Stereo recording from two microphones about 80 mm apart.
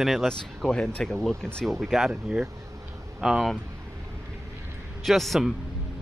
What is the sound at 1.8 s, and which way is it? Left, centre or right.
Speech, centre.